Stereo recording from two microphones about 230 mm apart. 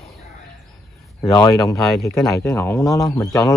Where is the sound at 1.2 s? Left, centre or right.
Centre.